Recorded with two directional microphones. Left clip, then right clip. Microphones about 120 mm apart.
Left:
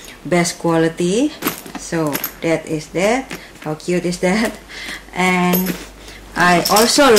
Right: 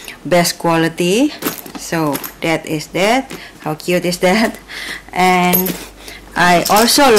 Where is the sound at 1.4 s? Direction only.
15° right (ahead or behind).